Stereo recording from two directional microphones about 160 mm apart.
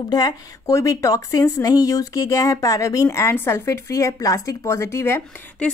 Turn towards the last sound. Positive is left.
turn(degrees=15)  # may be behind; listen again after turning